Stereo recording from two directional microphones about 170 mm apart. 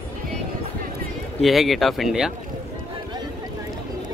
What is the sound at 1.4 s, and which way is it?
Speech, centre (ahead or behind).